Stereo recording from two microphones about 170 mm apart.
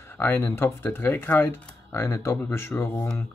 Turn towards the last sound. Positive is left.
turn(degrees=10)  # may be behind; listen again after turning